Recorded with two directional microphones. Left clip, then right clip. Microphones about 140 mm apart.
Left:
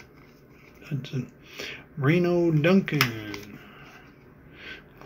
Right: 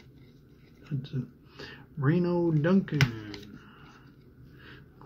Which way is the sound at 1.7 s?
20° right (ahead or behind).